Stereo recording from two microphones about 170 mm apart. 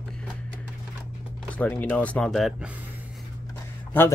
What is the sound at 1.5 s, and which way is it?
Speech, 10° left (ahead or behind).